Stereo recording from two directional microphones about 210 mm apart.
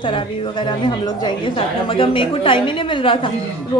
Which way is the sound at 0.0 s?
25° left (ahead or behind).